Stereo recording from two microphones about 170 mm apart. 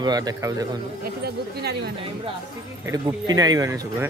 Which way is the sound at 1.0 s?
70° right (ahead or behind).